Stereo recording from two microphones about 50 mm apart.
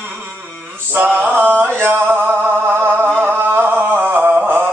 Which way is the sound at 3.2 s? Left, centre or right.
Right.